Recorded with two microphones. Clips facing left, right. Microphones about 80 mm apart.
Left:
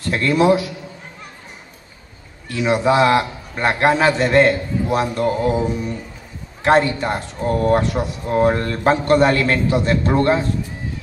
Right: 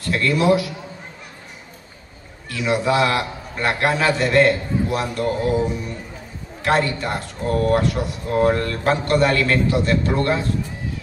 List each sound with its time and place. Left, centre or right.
0.0 s a man's voice: left
2.5 s a man's voice: left